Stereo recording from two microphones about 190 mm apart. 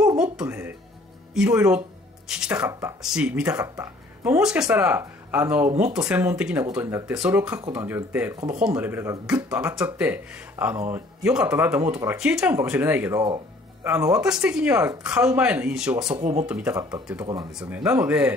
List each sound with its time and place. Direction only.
0.0 s music: 5° right (ahead or behind)
1.3 s speech: 5° right (ahead or behind)
2.7 s speech: 15° right (ahead or behind)
3.0 s speech: 5° right (ahead or behind)
16.2 s speech: 35° right (ahead or behind)
16.4 s speech: 5° right (ahead or behind)